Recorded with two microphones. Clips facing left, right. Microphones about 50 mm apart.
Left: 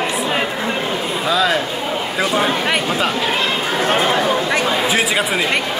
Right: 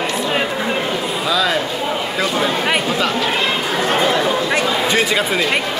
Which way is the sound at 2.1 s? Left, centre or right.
Left.